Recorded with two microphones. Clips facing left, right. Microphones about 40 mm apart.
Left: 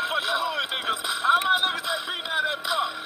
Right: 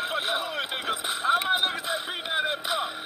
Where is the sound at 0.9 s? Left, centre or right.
Left.